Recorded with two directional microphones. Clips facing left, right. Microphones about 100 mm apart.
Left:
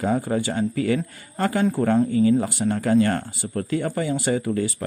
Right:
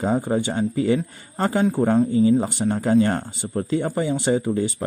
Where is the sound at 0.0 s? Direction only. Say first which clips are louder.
Right 1 dB; 20° right (ahead or behind).